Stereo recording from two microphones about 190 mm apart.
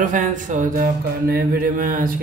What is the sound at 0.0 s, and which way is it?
Music, 40° right (ahead or behind).